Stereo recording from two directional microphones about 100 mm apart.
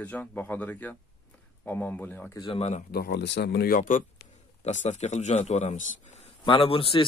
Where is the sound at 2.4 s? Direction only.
75° left (ahead or behind).